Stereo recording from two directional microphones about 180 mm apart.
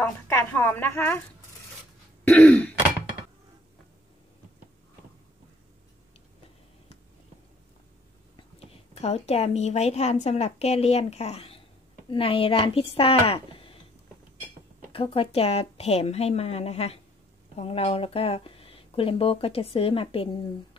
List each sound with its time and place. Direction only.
0.0 s speech: 15° left (ahead or behind)
2.2 s speech: 10° left (ahead or behind)
8.4 s a woman's voice: 35° left (ahead or behind)
14.9 s speech: 30° left (ahead or behind)